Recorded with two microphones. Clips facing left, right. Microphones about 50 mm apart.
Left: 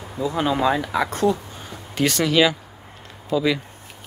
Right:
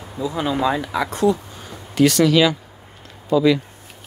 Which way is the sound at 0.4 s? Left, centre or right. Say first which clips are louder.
Even; left.